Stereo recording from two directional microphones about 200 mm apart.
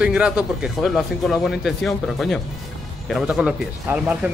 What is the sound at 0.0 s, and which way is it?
Speech, 5° right (ahead or behind).